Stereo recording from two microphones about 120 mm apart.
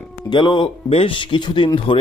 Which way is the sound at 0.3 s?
40° left (ahead or behind).